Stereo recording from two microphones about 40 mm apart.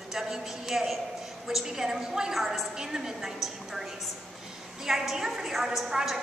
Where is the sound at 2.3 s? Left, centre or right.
Centre.